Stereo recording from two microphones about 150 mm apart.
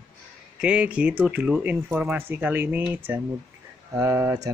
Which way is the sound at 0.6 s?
5° right (ahead or behind).